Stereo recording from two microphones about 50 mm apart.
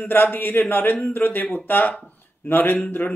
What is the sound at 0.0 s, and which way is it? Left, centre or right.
A man's voice, left.